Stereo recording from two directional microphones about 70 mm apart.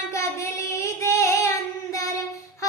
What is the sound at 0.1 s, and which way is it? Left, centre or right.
Child singing, left.